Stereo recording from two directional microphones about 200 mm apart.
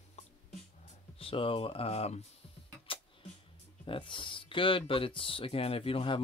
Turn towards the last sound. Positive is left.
turn(degrees=25)  # may be behind; listen again after turning